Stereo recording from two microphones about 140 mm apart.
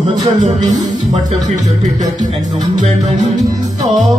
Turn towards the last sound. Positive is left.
turn(degrees=-60)  # may be behind; listen again after turning